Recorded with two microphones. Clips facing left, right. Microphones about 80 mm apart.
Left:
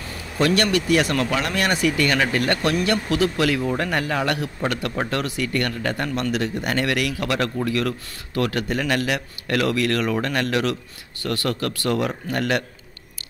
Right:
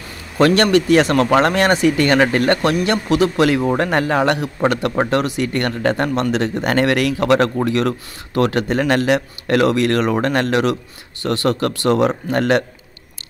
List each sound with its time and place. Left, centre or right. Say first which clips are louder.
0.4 s a man's voice: right 7 dB; right
5.5 s speech: right 5 dB; right
6.0 s a man's voice: right 5 dB; right